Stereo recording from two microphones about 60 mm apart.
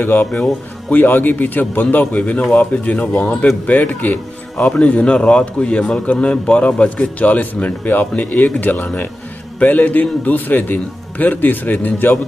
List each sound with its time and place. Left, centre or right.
0.0 s a man's voice: left
0.3 s speech: centre
0.9 s a man's voice: left